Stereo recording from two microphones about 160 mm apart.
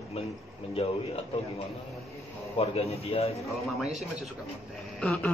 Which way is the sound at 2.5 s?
40° left (ahead or behind).